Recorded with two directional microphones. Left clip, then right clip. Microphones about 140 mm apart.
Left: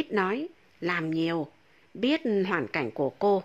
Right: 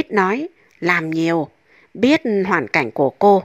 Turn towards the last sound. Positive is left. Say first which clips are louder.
# right 12 dB
turn(degrees=-40)  # may be behind; listen again after turning